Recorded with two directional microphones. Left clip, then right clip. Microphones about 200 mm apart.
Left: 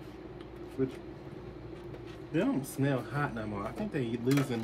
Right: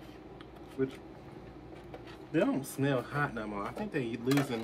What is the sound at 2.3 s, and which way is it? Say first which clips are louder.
Speech: right 1 dB; 10° right (ahead or behind).